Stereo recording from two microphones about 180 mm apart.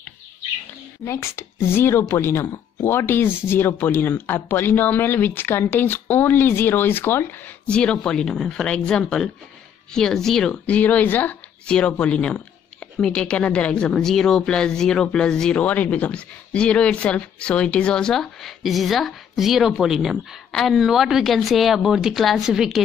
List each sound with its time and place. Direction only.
1.0 s a woman's voice: 15° left (ahead or behind); by 22.8 s centre (ahead or behind)